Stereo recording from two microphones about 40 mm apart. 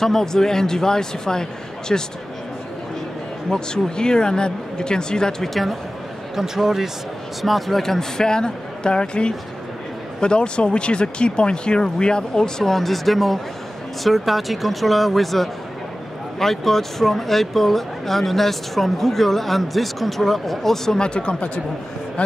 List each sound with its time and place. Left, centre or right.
0.0 s a man's voice: centre
3.4 s speech: centre
5.4 s speech: centre
6.3 s a man's voice: centre
21.0 s speech: left